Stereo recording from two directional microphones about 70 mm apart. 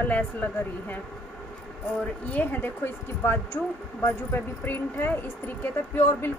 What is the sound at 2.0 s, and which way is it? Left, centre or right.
A woman's voice, left.